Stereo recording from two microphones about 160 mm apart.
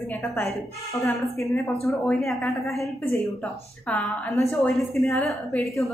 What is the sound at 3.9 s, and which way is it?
A woman's voice, 5° left (ahead or behind).